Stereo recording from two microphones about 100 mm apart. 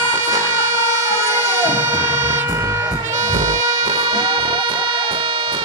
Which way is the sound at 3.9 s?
50° right (ahead or behind).